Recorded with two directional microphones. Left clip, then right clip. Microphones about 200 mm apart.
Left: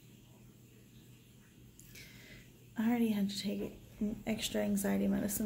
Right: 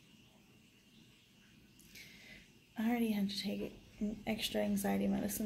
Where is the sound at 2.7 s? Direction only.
10° left (ahead or behind).